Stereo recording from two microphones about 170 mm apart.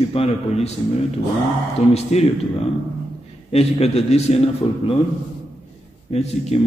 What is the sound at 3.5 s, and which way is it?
Speech, 35° left (ahead or behind).